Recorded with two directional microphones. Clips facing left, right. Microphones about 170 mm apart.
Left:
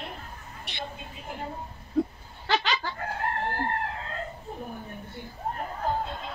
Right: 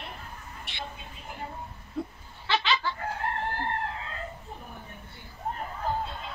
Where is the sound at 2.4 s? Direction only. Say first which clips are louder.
Even; 40° left (ahead or behind).